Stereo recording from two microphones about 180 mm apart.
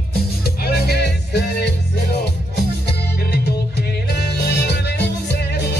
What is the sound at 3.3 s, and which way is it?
Music, 65° left (ahead or behind).